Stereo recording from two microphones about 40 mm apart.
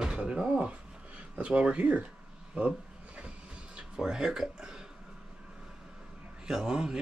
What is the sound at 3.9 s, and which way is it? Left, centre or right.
Speech, centre.